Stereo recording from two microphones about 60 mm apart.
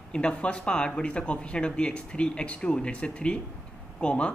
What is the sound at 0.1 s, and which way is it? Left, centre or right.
Speech, centre.